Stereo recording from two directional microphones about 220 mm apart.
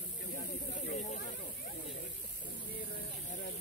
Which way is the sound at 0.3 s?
35° left (ahead or behind).